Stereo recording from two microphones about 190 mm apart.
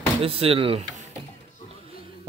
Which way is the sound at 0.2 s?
30° right (ahead or behind).